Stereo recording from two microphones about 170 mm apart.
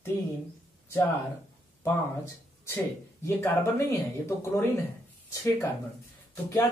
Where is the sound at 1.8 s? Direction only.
15° left (ahead or behind).